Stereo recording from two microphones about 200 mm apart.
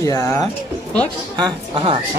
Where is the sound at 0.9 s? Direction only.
5° left (ahead or behind).